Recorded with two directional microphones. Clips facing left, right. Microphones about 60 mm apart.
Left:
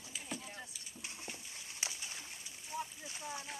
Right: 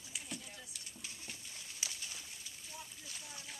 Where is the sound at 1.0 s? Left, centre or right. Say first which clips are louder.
Left 4 dB; left.